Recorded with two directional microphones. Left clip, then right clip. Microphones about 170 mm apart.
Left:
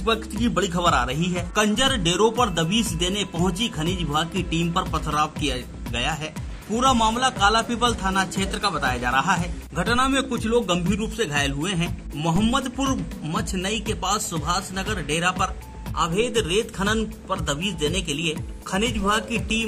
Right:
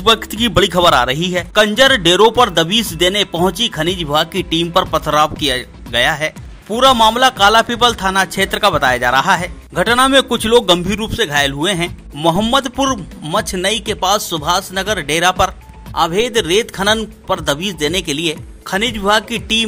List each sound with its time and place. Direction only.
0.1 s a man's voice: 40° right (ahead or behind)